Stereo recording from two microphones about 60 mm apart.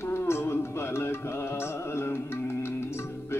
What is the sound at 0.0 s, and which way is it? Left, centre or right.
Music, left.